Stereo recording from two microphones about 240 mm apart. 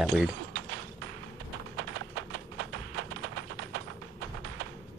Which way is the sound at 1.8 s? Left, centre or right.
Right.